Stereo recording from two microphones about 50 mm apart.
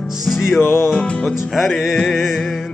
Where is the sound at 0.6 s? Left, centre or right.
Left.